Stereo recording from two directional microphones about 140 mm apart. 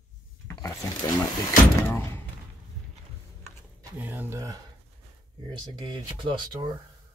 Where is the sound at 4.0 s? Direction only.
15° right (ahead or behind).